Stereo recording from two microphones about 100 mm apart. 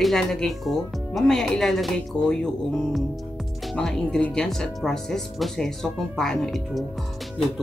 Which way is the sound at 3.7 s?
5° left (ahead or behind).